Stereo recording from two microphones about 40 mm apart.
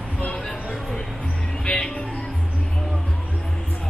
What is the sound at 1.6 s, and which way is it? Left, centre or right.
Music, left.